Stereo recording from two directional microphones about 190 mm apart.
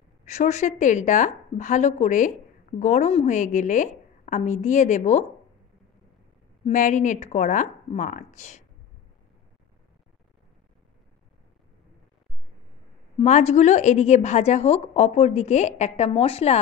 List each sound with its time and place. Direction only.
0.2 s a woman's voice: 40° left (ahead or behind)
6.6 s a woman's voice: 40° left (ahead or behind)
13.2 s a woman's voice: 35° left (ahead or behind)